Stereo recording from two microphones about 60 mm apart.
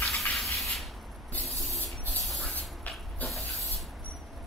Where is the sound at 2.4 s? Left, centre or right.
Left.